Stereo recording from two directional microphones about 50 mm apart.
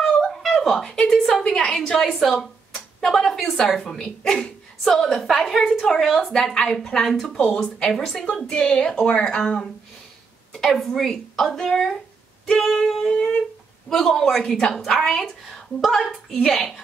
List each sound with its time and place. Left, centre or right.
0.2 s a sound: centre
0.9 s a woman's voice: centre
13.1 s humming: centre
13.8 s a woman's voice: centre